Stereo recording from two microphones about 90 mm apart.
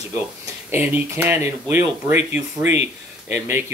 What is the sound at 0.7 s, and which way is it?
Speech, 25° right (ahead or behind).